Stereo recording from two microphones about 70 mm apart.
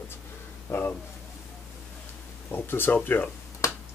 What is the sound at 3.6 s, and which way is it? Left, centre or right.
Finger snapping, left.